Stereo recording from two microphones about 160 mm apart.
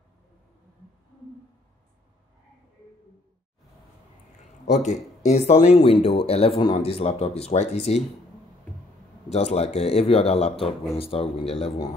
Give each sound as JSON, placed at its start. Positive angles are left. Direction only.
{"t": 4.8, "sound": "speech", "side_deg": 45}
{"t": 9.3, "sound": "speech", "side_deg": 40}